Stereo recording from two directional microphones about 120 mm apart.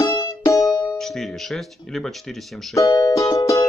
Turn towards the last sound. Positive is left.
turn(degrees=25)  # may be behind; listen again after turning